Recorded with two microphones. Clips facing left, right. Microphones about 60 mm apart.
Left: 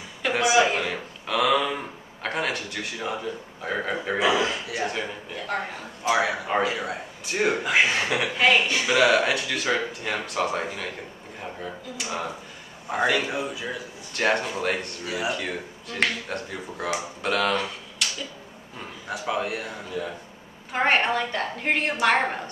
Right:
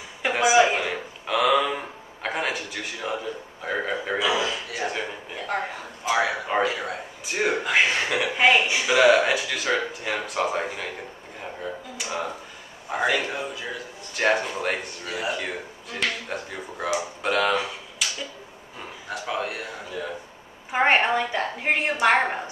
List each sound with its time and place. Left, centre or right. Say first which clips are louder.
0.3 s a sound: right 2 dB; centre
2.2 s a man's voice: even; centre
4.2 s a man's voice: left 3 dB; left
4.7 s a woman's voice: even; centre
6.0 s speech: even; centre
8.4 s speech: right 1 dB; centre
15.0 s a man's voice: left 1 dB; centre
15.9 s speech: left 2 dB; centre
19.0 s speech: left 1 dB; centre
20.7 s a woman's voice: right 2 dB; centre